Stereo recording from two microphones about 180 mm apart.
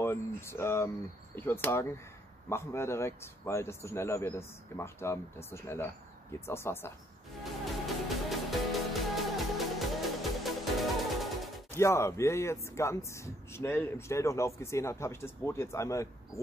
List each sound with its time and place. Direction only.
0.0 s speech: 15° left (ahead or behind)
7.6 s music: centre (ahead or behind)
11.7 s speech: 15° left (ahead or behind)